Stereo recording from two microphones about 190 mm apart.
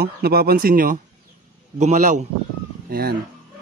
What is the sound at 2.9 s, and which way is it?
Speech, 55° right (ahead or behind).